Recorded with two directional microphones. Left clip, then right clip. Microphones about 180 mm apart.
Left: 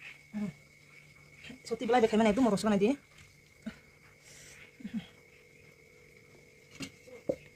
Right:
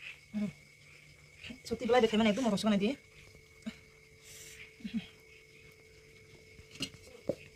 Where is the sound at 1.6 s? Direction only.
25° left (ahead or behind).